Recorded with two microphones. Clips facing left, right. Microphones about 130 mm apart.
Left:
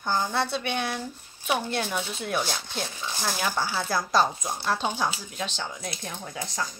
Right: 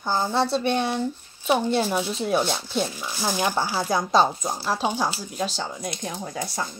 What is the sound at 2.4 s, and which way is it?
Speech, 5° right (ahead or behind).